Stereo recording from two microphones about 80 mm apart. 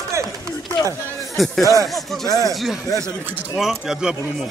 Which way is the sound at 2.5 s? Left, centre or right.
Centre.